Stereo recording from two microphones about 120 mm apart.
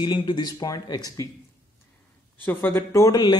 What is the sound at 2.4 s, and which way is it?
Speech, 20° left (ahead or behind).